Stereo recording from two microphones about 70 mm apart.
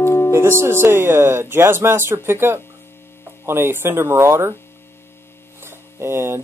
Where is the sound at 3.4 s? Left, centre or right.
Right.